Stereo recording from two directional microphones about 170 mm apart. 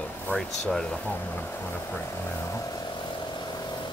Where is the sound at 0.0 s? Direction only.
5° left (ahead or behind).